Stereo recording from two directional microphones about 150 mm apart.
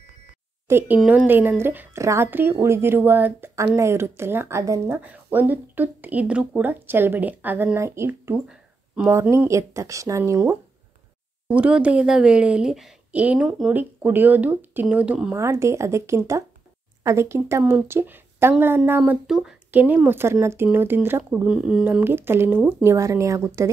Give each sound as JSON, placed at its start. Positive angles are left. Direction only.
{"t": 0.7, "sound": "speech", "side_deg": -15}
{"t": 8.5, "sound": "a sound", "side_deg": -5}
{"t": 9.1, "sound": "speech", "side_deg": -20}
{"t": 11.4, "sound": "speech", "side_deg": -10}
{"t": 15.3, "sound": "speech", "side_deg": -20}